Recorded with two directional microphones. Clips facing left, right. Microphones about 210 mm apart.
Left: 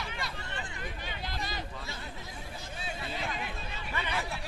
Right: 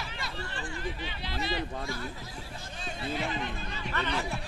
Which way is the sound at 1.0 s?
45° left (ahead or behind).